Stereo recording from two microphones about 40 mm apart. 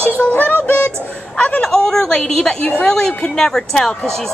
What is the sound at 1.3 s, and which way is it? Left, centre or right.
Speech, left.